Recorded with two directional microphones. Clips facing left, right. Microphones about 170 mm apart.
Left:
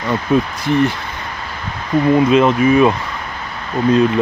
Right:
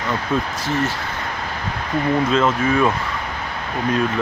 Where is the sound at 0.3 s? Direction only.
15° left (ahead or behind).